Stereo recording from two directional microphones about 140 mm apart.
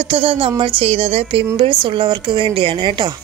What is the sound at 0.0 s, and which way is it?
A woman's voice, 45° right (ahead or behind).